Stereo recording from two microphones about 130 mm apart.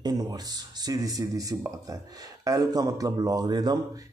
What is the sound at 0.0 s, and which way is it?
A man's voice, 30° right (ahead or behind).